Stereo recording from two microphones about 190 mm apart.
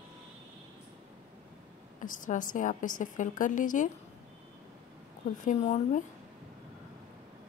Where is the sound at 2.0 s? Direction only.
45° left (ahead or behind).